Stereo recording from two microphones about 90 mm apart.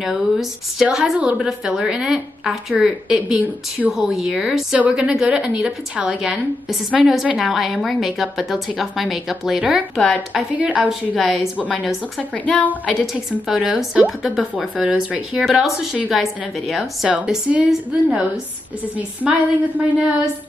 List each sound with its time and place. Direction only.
0.0 s a woman's voice: 5° right (ahead or behind)
10.3 s a woman's voice: 15° right (ahead or behind)
10.9 s a woman's voice: centre (ahead or behind)
13.0 s a woman's voice: centre (ahead or behind)
17.1 s a woman's voice: 15° right (ahead or behind)